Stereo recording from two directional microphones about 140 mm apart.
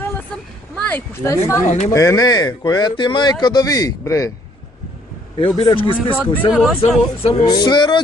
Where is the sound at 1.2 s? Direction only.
20° left (ahead or behind).